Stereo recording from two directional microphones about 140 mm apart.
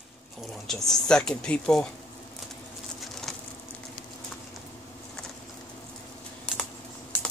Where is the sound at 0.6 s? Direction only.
Centre (ahead or behind).